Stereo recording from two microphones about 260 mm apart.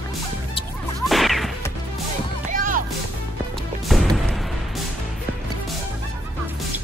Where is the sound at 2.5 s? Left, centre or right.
Right.